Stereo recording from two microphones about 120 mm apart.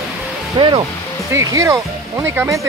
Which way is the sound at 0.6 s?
45° right (ahead or behind).